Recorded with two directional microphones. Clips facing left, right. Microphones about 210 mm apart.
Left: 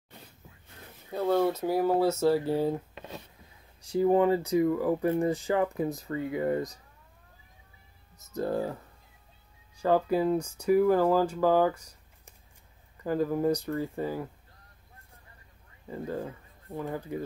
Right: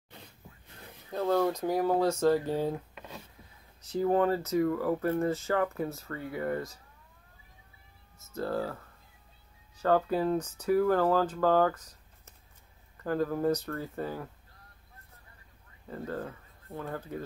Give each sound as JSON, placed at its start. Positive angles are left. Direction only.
{"t": 1.2, "sound": "speech", "side_deg": 5}
{"t": 3.8, "sound": "speech", "side_deg": 10}
{"t": 8.3, "sound": "speech", "side_deg": 20}
{"t": 15.9, "sound": "speech", "side_deg": 10}